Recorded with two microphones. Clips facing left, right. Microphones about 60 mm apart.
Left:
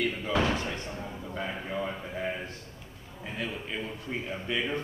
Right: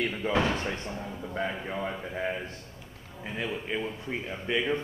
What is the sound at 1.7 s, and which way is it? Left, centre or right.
Speech, centre.